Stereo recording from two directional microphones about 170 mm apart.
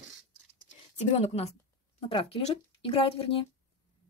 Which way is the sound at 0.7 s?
40° left (ahead or behind).